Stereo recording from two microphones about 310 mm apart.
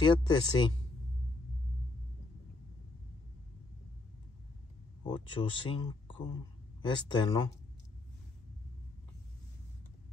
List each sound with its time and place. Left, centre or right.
0.0 s speech: centre
5.0 s speech: centre